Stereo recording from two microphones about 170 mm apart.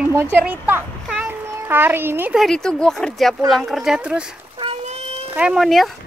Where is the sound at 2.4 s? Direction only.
5° left (ahead or behind).